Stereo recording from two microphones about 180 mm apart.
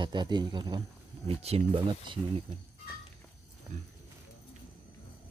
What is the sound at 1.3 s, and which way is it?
Speech, 35° right (ahead or behind).